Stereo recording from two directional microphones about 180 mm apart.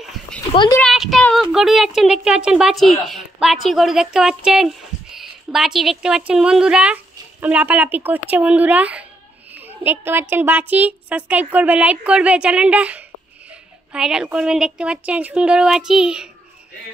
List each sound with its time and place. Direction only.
0.5 s speech: 25° left (ahead or behind)
0.7 s a woman's voice: centre (ahead or behind)